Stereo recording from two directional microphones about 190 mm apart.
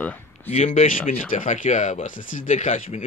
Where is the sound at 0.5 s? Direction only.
35° left (ahead or behind).